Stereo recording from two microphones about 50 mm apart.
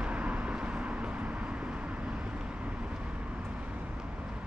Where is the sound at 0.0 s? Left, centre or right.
Right.